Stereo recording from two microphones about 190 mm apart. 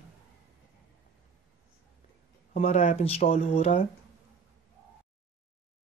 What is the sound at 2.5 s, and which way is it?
Speech, 35° left (ahead or behind).